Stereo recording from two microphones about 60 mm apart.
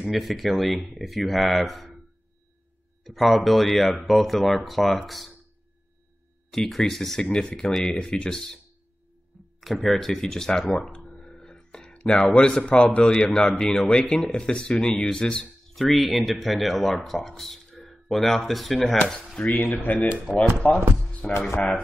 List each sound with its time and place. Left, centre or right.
0.1 s speech: centre
3.0 s speech: centre
6.5 s speech: centre
7.2 s speech: centre
9.6 s speech: centre
15.7 s speech: centre
19.3 s speech: left